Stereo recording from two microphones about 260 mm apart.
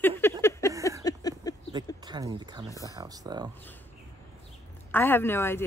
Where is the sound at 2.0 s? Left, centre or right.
Centre.